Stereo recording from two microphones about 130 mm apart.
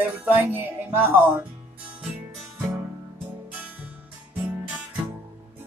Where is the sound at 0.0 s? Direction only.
15° right (ahead or behind).